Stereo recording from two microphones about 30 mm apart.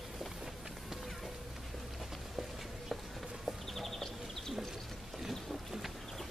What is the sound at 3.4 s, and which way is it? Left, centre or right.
Horse, centre.